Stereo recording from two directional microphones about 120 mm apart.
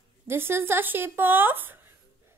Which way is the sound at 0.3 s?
20° right (ahead or behind).